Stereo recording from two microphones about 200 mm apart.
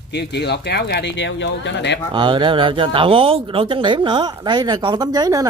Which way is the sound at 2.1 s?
25° right (ahead or behind).